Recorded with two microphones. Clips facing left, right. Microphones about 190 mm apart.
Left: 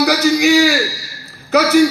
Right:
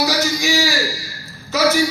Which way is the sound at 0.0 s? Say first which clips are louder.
Left 7 dB; 65° left (ahead or behind).